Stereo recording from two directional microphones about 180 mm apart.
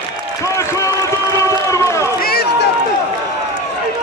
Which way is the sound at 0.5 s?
15° left (ahead or behind).